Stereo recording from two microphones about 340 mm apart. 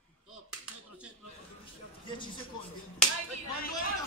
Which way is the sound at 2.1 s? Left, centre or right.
Centre.